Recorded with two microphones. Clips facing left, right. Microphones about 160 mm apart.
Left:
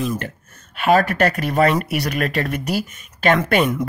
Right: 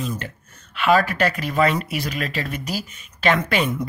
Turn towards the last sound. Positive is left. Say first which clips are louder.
# left 3 dB
turn(degrees=50)  # may be behind; listen again after turning